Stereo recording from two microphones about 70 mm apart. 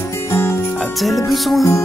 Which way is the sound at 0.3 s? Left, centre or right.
Left.